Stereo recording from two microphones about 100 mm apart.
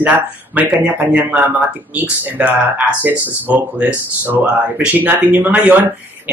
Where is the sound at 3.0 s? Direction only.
15° right (ahead or behind).